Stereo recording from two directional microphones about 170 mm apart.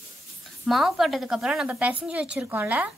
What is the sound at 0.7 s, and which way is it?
A woman's voice, centre (ahead or behind).